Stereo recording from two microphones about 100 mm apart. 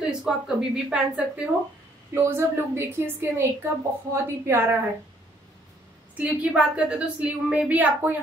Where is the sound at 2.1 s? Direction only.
25° right (ahead or behind).